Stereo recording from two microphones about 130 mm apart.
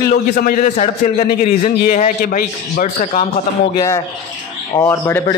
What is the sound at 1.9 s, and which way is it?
A man's voice, 80° left.